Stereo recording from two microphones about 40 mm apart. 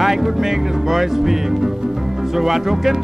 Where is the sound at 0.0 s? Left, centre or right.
Centre.